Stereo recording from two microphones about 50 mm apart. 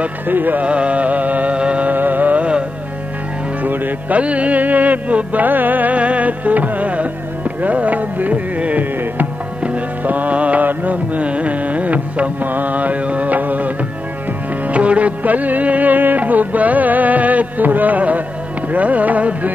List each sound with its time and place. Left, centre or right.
0.3 s music: right
0.7 s music: right
2.0 s music: right
3.6 s music: right
4.2 s music: right